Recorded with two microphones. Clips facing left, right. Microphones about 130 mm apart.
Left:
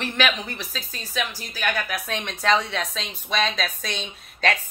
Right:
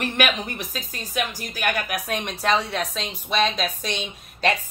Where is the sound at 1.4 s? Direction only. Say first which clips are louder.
Right 2 dB; 50° right (ahead or behind).